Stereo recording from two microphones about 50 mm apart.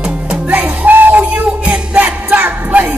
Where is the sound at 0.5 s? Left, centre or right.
Right.